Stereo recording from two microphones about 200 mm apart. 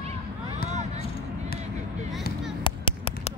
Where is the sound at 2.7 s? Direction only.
25° left (ahead or behind).